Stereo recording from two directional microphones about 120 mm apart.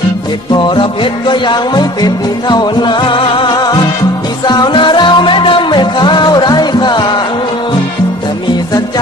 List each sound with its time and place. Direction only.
0.6 s music: 40° left (ahead or behind)